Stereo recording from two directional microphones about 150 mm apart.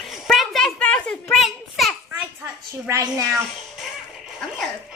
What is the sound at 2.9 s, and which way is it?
Speech, 25° right (ahead or behind).